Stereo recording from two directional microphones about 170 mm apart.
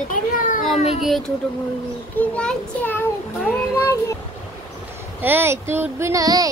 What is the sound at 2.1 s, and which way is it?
Speech, 5° left (ahead or behind).